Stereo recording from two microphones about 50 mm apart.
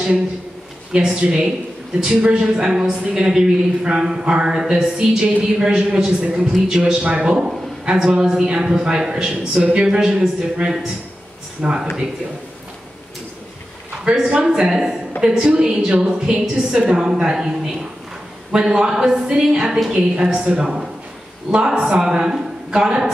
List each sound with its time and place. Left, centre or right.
0.9 s a man's voice: centre
6.4 s a man's voice: centre
14.0 s a man's voice: centre